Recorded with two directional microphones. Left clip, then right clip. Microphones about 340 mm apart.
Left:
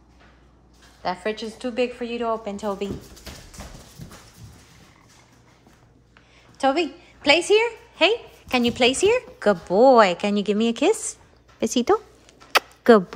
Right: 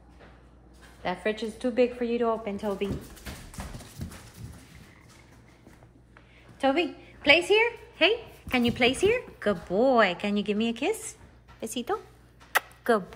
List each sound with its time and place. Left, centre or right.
1.0 s a woman's voice: centre
6.6 s a woman's voice: centre
12.5 s a sound: left